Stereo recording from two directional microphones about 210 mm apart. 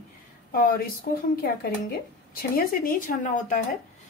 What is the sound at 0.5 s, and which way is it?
Speech, 45° left (ahead or behind).